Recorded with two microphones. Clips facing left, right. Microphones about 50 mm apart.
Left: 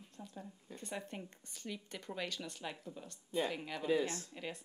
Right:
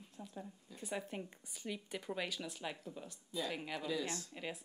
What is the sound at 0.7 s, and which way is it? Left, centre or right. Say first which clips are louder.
Speech: right 2 dB; centre.